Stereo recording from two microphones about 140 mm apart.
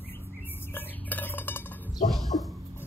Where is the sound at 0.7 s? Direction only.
15° left (ahead or behind).